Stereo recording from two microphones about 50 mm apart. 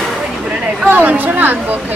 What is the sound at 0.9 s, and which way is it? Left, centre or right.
Speech, right.